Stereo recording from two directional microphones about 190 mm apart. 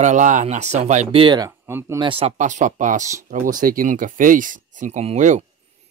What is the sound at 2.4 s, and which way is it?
Speech, 40° right (ahead or behind).